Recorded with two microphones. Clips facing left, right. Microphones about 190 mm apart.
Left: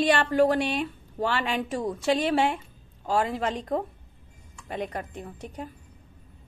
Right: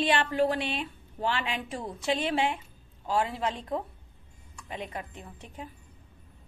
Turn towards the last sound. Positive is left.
turn(degrees=40)  # may be behind; listen again after turning